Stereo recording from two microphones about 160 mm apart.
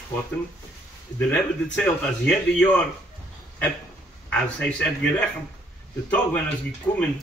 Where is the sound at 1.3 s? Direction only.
10° left (ahead or behind).